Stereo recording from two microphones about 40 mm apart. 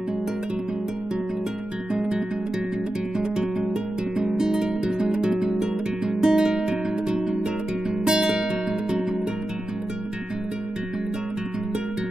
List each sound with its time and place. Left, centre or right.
2.0 s music: centre
4.2 s music: centre